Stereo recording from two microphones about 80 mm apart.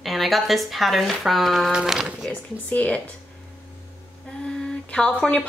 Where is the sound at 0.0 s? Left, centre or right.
Centre.